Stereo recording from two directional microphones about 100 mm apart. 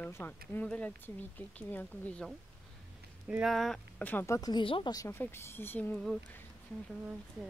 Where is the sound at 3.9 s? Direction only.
15° left (ahead or behind).